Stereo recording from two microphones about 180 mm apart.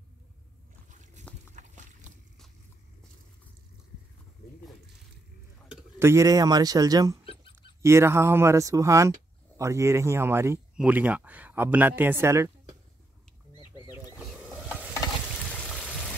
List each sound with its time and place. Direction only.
1.5 s boat: 45° right (ahead or behind)
5.7 s speech: 15° right (ahead or behind)
14.2 s mechanisms: centre (ahead or behind)
15.4 s a sound: 5° left (ahead or behind)